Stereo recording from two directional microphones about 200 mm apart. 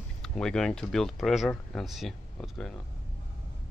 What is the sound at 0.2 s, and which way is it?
Speech, 5° left (ahead or behind).